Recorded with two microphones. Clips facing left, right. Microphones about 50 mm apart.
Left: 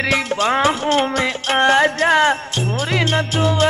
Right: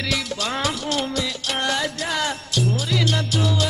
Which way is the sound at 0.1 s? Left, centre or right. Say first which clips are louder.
Left 8 dB; left.